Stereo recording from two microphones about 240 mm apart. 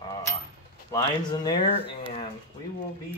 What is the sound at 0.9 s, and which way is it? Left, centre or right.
Speech, centre.